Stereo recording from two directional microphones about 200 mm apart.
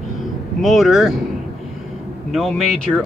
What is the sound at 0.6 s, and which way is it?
Speech, centre (ahead or behind).